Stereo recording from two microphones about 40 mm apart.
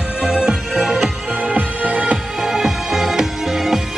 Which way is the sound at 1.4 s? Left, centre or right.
Right.